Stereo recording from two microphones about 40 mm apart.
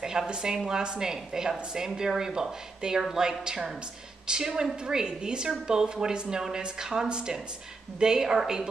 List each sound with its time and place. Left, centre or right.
0.3 s a woman's voice: centre